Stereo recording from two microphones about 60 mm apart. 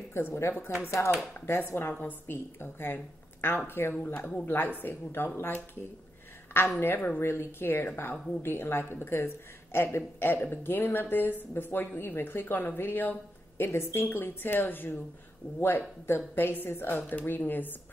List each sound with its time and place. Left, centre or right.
0.1 s speech: left
6.5 s speech: left